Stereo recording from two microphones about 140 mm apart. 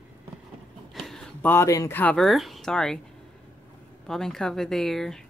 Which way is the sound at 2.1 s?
Centre (ahead or behind).